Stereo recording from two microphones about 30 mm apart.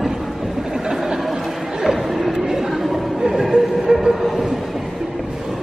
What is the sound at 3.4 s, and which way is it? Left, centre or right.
Music, centre.